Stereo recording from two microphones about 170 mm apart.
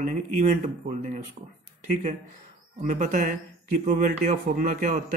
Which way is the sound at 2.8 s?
50° right (ahead or behind).